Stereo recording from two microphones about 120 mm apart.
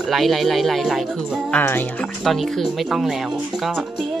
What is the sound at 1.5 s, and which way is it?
Speech, 15° left (ahead or behind).